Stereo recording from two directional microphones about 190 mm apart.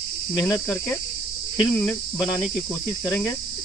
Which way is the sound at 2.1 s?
20° left (ahead or behind).